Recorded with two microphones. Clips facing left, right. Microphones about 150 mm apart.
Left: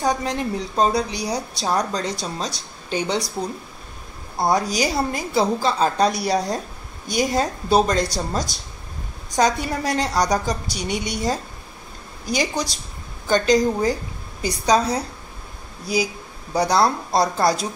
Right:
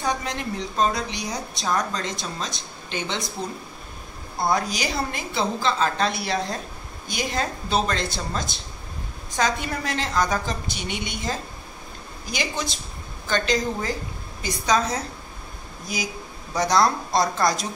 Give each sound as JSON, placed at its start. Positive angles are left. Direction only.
{"t": 0.0, "sound": "a woman's voice", "side_deg": 40}
{"t": 4.4, "sound": "a woman's voice", "side_deg": 40}
{"t": 16.5, "sound": "a woman's voice", "side_deg": 30}